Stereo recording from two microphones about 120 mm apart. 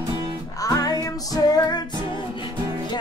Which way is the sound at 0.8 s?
30° left (ahead or behind).